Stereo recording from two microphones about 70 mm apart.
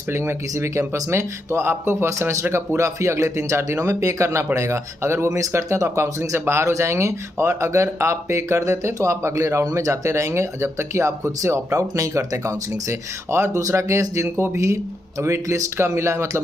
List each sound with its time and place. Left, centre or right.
0.1 s speech: right